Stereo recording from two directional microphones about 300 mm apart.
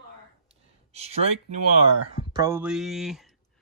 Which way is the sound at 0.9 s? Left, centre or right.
Right.